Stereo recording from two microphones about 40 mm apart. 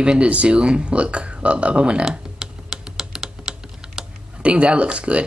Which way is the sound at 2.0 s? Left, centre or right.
Centre.